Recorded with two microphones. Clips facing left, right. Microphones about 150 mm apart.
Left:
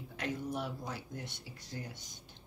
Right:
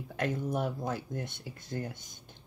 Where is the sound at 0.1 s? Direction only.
50° right (ahead or behind).